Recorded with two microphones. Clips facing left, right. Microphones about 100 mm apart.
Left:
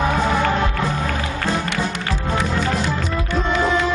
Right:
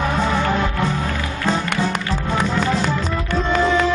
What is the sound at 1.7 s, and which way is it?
Music, 45° right (ahead or behind).